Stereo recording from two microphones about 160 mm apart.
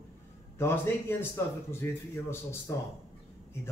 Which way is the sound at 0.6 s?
15° left (ahead or behind).